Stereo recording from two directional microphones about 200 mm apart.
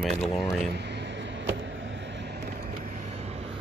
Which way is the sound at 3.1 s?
30° right (ahead or behind).